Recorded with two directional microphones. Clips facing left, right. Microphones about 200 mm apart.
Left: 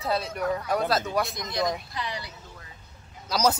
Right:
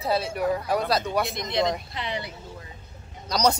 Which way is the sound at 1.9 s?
25° right (ahead or behind).